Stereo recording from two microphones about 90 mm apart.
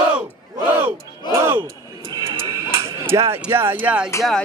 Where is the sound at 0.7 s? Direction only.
25° right (ahead or behind).